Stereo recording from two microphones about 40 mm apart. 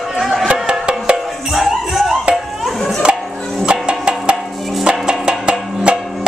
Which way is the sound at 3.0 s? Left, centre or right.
Right.